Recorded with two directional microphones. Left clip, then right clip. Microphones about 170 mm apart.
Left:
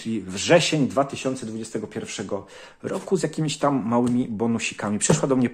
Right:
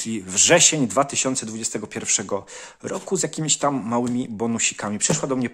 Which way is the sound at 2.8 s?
25° right (ahead or behind).